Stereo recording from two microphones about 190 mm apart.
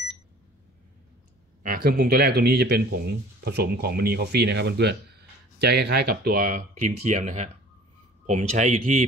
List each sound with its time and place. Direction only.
1.6 s speech: 50° right (ahead or behind)